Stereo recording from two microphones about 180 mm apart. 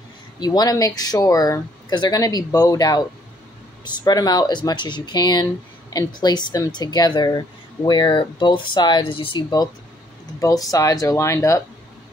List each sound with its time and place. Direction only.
0.4 s speech: 20° left (ahead or behind)